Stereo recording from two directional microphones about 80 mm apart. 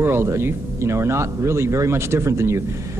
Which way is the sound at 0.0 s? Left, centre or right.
Right.